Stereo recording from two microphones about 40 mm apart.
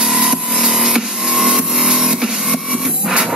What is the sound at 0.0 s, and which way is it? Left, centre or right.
Music, centre.